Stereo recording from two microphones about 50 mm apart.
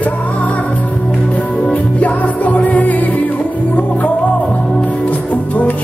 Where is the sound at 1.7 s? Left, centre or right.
Left.